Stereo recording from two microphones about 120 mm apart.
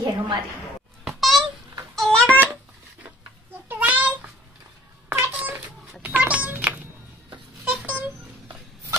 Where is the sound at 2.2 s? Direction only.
15° right (ahead or behind).